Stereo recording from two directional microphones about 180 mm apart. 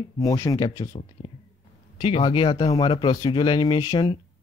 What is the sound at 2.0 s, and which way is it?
Speech, 30° left (ahead or behind).